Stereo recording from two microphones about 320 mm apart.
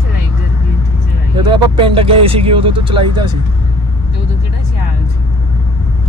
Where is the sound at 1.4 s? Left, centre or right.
Centre.